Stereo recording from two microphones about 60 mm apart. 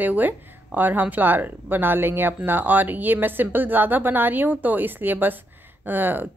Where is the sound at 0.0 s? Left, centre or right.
Right.